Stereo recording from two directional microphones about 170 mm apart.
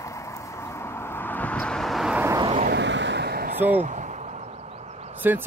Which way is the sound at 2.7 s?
90° right.